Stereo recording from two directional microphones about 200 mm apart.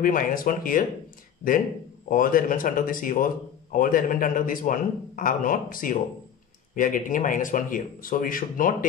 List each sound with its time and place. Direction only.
0.0 s a man's voice: 45° left (ahead or behind)
2.0 s a man's voice: 45° left (ahead or behind)